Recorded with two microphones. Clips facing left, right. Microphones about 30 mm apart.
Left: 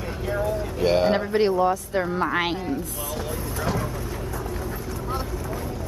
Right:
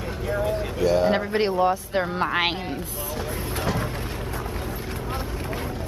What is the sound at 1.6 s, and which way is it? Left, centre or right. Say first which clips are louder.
Speech: even; right.